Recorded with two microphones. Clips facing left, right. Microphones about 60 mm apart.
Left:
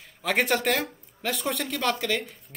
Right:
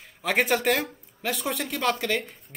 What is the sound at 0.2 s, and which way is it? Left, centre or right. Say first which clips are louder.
Speech: right 1 dB; centre.